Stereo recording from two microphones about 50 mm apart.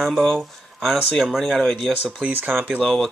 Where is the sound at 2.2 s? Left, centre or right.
Right.